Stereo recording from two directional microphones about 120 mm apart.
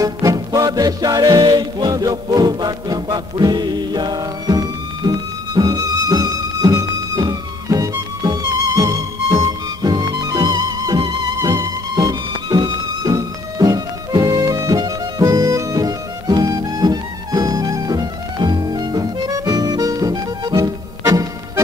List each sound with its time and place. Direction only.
0.0 s music: 30° right (ahead or behind)